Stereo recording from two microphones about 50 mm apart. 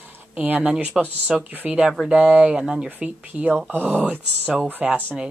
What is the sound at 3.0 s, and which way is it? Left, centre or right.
A woman's voice, right.